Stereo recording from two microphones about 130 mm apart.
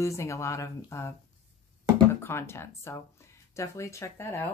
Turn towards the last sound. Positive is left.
turn(degrees=20)  # may be behind; listen again after turning